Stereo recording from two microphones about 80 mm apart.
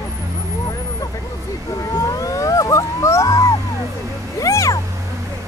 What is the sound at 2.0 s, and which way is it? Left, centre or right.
Music, left.